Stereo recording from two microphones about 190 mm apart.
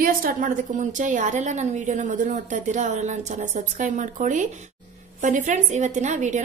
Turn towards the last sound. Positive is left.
turn(degrees=-40)  # may be behind; listen again after turning